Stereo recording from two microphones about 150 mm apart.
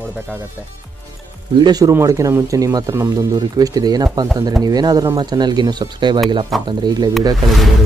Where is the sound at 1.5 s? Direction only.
25° right (ahead or behind).